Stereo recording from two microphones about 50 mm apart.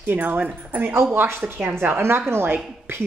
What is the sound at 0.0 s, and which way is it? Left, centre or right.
A woman's voice, right.